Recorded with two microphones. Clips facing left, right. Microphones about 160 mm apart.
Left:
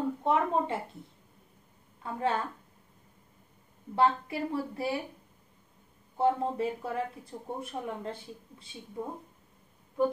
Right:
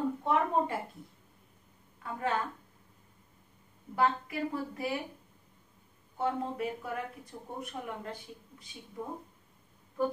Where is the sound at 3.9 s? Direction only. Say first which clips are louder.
Left 3 dB; 30° left (ahead or behind).